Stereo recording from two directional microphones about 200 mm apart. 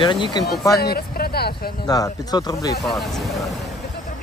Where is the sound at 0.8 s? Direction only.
50° left (ahead or behind).